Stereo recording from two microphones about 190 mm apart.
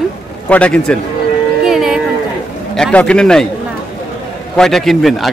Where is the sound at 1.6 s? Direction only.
Centre (ahead or behind).